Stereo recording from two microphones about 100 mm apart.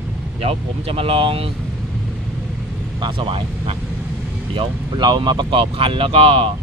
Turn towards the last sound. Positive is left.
turn(degrees=-70)  # may be behind; listen again after turning